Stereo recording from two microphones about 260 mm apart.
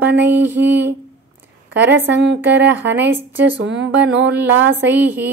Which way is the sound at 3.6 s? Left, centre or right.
Right.